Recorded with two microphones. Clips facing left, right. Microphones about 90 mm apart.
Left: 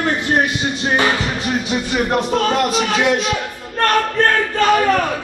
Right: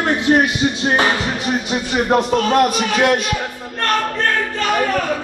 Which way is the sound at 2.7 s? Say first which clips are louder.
Right 1 dB; 55° right (ahead or behind).